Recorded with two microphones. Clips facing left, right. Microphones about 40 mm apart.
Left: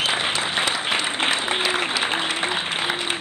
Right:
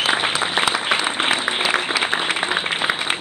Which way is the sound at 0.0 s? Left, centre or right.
Right.